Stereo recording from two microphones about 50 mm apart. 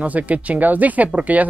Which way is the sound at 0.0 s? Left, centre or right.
Right.